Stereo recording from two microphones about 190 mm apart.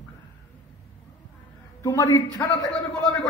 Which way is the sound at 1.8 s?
15° left (ahead or behind).